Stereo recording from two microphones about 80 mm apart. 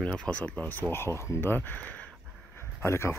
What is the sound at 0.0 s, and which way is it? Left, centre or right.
Speech, centre.